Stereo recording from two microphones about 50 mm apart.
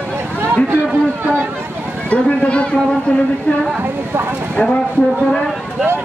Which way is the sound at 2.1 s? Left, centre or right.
Left.